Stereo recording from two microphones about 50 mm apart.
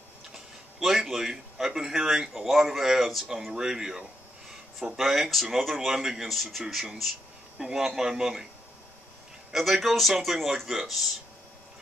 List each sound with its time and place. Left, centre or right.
0.3 s a man's voice: centre
6.2 s speech: centre
7.5 s a man's voice: centre
9.5 s speech: centre